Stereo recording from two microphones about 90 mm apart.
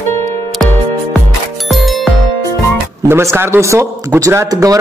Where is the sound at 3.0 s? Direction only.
25° right (ahead or behind).